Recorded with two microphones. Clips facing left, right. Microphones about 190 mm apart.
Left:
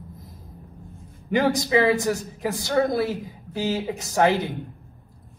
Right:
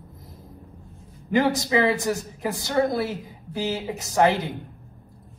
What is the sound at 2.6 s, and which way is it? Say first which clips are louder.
Speech: left 1 dB; 20° left (ahead or behind).